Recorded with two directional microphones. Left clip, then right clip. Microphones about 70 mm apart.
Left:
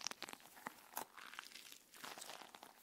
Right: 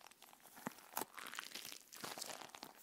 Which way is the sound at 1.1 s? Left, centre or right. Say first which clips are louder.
Right 4 dB; right.